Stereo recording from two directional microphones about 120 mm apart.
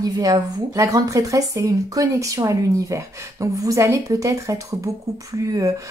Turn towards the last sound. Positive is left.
turn(degrees=-30)  # may be behind; listen again after turning